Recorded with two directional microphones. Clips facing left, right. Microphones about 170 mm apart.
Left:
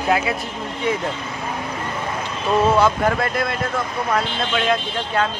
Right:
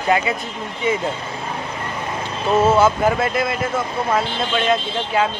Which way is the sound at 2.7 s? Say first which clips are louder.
Right 2 dB; 5° right (ahead or behind).